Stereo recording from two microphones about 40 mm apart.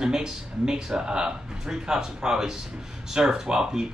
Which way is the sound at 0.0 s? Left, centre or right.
Centre.